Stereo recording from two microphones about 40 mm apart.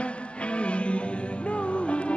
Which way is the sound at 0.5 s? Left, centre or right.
Left.